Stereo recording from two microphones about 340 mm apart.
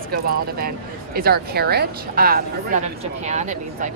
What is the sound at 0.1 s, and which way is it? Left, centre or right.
Speech, right.